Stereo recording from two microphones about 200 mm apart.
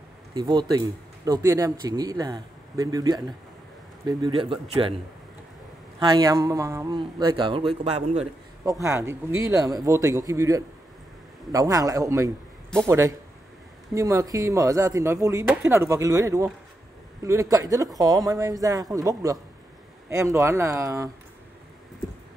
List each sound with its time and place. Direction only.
0.3 s speech: 20° right (ahead or behind)
8.8 s a man's voice: 15° right (ahead or behind)